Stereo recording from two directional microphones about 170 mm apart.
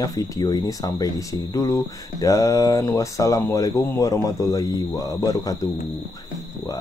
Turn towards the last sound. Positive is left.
turn(degrees=20)  # may be behind; listen again after turning